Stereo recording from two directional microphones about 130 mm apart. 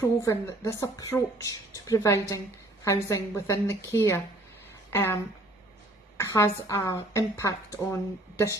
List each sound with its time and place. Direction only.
0.0 s a woman's voice: 20° left (ahead or behind)